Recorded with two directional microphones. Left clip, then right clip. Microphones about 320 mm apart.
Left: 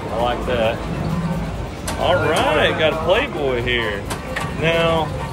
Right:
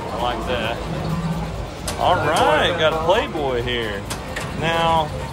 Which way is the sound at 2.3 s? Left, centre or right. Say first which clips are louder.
Even; right.